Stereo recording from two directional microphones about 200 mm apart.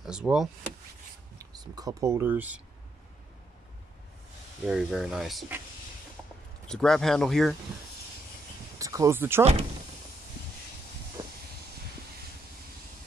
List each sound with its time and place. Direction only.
0.0 s speech: 5° right (ahead or behind)
1.4 s speech: 20° right (ahead or behind)
4.6 s speech: centre (ahead or behind)
6.7 s speech: 5° left (ahead or behind)
8.7 s a sound: 15° right (ahead or behind)
9.4 s speech: 35° right (ahead or behind)